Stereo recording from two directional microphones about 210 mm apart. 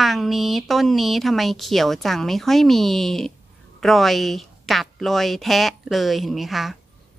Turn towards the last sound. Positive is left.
turn(degrees=0)  # may be behind; listen again after turning